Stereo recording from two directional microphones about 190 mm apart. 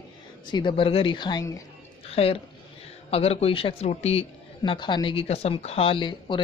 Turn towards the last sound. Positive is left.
turn(degrees=25)  # may be behind; listen again after turning